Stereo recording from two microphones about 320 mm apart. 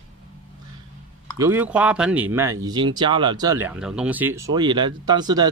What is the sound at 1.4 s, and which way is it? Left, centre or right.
Speech, centre.